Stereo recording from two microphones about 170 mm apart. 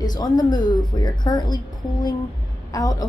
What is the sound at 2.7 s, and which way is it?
Speech, 20° left (ahead or behind).